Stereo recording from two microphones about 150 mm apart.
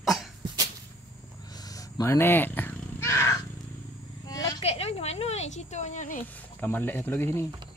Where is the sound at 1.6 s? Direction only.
25° left (ahead or behind).